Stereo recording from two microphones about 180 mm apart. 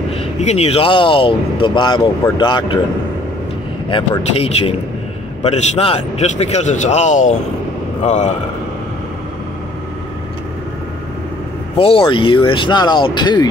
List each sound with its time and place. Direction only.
0.1 s speech: 40° left (ahead or behind)
3.9 s a man's voice: 30° left (ahead or behind)
11.7 s speech: 30° left (ahead or behind)